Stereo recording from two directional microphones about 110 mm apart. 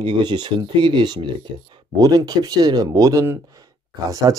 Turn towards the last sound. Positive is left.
turn(degrees=-35)  # may be behind; listen again after turning